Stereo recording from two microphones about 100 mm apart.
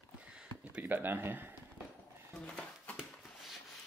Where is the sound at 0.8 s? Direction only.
20° right (ahead or behind).